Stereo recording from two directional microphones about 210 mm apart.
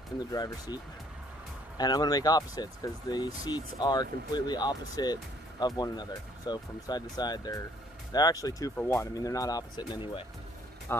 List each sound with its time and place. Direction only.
0.3 s speech: 20° left (ahead or behind)
1.8 s speech: 20° left (ahead or behind)
10.9 s speech: 10° left (ahead or behind)